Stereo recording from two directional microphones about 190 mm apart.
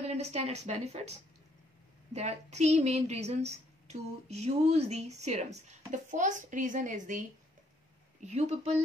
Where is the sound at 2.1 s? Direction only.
35° right (ahead or behind).